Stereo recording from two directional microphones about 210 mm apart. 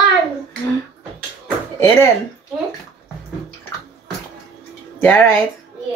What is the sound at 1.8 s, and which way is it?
Speech, 10° left (ahead or behind).